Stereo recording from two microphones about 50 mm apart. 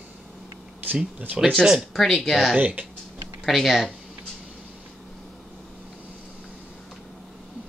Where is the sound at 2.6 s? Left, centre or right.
Right.